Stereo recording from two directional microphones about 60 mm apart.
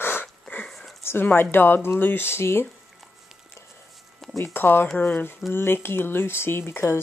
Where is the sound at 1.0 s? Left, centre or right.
Left.